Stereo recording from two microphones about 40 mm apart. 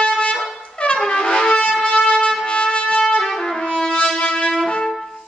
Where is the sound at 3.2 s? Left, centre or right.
Centre.